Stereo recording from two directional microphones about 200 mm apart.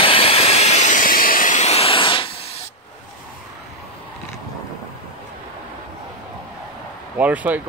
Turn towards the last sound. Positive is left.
turn(degrees=-10)  # may be behind; listen again after turning